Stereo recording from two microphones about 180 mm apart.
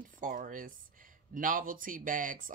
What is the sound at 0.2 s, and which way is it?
Speech, 50° right (ahead or behind).